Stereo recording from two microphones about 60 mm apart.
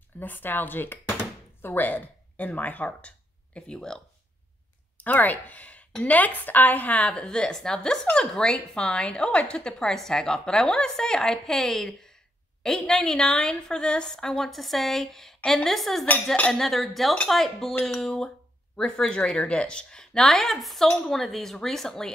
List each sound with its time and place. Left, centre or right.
0.2 s speech: left; by 4.0 s centre
5.0 s a woman's voice: left; by 22.1 s centre